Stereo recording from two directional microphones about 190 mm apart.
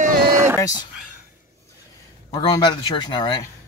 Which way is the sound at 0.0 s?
50° right (ahead or behind).